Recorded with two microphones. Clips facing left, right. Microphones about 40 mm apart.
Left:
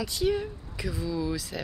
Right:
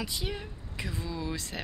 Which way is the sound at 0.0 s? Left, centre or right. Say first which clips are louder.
Left 9 dB; centre.